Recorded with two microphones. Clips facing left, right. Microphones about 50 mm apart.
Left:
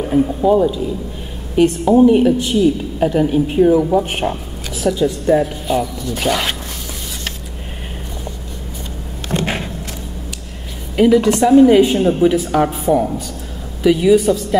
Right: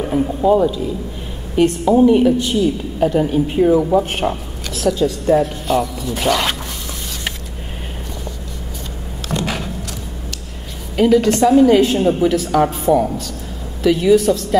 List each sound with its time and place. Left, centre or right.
0.0 s speech: centre
2.0 s speech: centre
3.2 s speech: centre
4.0 s a woman's voice: centre
9.3 s a sound: left
11.0 s speech: centre